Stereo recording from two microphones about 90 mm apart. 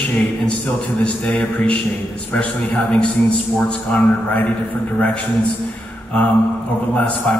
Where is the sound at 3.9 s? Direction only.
15° left (ahead or behind).